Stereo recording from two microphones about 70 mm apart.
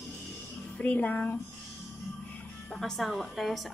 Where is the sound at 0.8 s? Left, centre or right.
Left.